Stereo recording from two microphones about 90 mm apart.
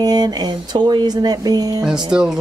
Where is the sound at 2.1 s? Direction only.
5° right (ahead or behind).